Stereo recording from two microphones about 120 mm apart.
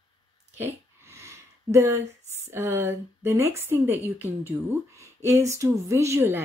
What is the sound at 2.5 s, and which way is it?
A woman's voice, 20° right (ahead or behind).